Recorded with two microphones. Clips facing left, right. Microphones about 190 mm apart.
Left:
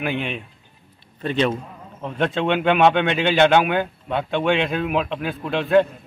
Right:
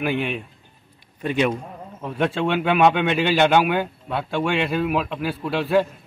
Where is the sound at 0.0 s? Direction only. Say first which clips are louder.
Right 2 dB; 5° right (ahead or behind).